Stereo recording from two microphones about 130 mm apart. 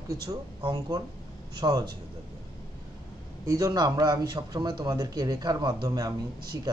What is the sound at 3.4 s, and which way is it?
Speech, 25° right (ahead or behind).